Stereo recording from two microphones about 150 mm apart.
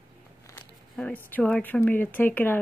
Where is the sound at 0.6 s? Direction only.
10° left (ahead or behind).